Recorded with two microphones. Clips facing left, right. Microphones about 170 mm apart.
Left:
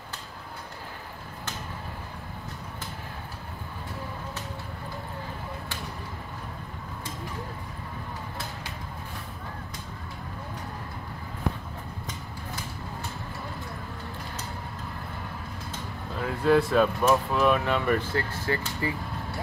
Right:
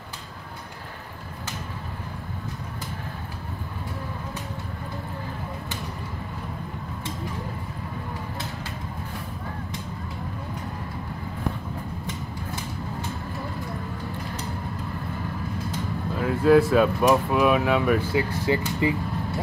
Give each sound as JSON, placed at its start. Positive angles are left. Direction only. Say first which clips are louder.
{"t": 16.2, "sound": "speech", "louder": "right 5 dB", "side_deg": -5}
{"t": 18.4, "sound": "speech", "louder": "right 6 dB", "side_deg": -15}